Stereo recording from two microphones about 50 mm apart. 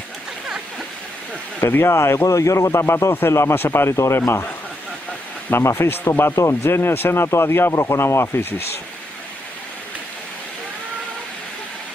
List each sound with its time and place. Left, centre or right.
1.6 s a man's voice: left
2.3 s a man's voice: left
3.9 s speech: left
5.6 s speech: left
6.3 s speech: left
7.7 s a man's voice: left